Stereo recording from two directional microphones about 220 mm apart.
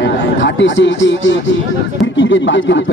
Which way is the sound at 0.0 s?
55° left (ahead or behind).